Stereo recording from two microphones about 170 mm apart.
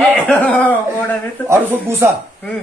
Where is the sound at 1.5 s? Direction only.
15° right (ahead or behind).